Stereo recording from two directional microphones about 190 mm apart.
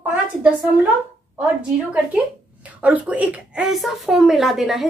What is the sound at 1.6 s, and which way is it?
A woman's voice, 5° right (ahead or behind).